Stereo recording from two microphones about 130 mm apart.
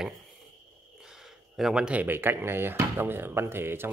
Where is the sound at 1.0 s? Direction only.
5° right (ahead or behind).